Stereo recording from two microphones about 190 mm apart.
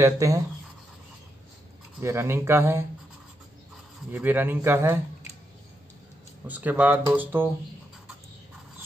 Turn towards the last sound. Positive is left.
turn(degrees=-10)  # may be behind; listen again after turning